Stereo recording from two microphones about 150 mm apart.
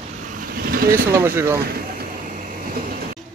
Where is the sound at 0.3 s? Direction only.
75° right (ahead or behind).